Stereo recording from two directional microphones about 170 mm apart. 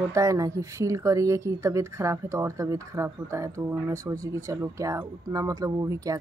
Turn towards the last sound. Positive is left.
turn(degrees=-20)  # may be behind; listen again after turning